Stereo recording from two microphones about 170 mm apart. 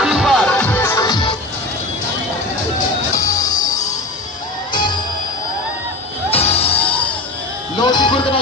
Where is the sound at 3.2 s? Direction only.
20° left (ahead or behind).